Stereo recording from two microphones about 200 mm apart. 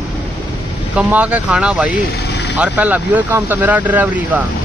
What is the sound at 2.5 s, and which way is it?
Speech, 5° right (ahead or behind).